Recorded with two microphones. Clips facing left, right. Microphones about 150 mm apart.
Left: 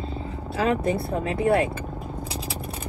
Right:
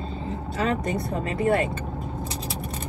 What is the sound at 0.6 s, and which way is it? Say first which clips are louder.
Speech: left 3 dB; 5° left (ahead or behind).